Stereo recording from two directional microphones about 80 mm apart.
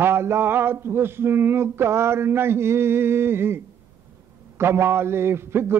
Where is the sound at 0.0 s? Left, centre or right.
Right.